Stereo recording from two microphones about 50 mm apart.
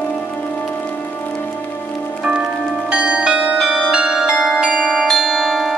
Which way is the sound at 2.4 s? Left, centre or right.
Centre.